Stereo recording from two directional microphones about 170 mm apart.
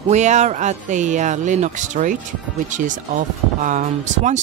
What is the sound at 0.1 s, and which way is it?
Speech, 45° right (ahead or behind).